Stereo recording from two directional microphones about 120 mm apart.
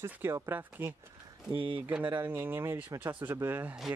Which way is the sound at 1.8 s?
15° right (ahead or behind).